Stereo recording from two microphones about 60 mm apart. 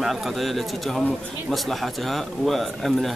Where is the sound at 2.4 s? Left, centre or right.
Centre.